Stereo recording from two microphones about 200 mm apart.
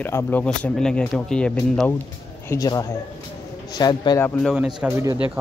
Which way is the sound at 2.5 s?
15° left (ahead or behind).